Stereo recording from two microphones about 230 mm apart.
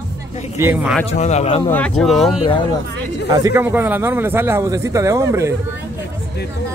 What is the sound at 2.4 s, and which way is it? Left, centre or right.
Speech, left.